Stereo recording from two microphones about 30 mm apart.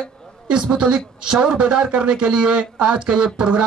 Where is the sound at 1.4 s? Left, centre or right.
Right.